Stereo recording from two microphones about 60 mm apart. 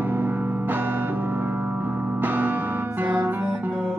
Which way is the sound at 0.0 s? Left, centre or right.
Right.